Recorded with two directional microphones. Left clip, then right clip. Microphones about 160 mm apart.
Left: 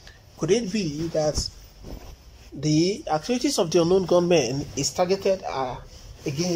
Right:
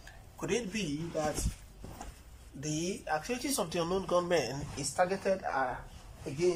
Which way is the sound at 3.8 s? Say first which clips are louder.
Left 11 dB; 20° left (ahead or behind).